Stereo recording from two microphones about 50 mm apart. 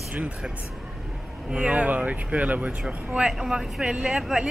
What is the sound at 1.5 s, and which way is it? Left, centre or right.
Speech, right.